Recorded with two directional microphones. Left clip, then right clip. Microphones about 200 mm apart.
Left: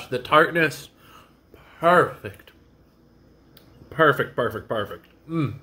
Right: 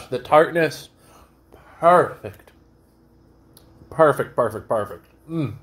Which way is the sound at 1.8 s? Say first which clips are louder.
Right 3 dB; 25° left (ahead or behind).